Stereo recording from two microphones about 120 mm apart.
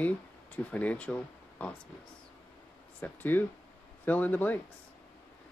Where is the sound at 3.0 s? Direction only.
15° left (ahead or behind).